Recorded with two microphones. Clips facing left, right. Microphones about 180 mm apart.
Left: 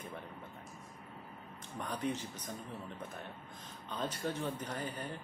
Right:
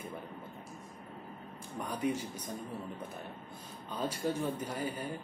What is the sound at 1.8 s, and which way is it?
Speech, 10° right (ahead or behind).